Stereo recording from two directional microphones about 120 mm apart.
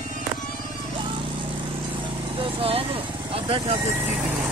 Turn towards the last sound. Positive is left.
turn(degrees=-50)  # may be behind; listen again after turning